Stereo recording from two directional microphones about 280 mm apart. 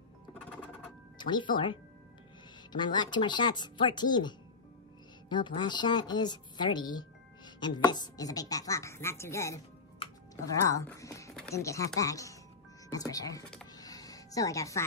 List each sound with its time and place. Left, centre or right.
0.3 s music: centre
1.1 s a woman's voice: centre
13.7 s music: centre